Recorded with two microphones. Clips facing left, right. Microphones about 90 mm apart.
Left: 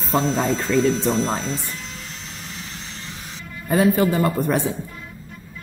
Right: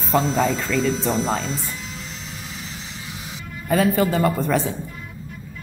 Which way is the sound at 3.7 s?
20° left (ahead or behind).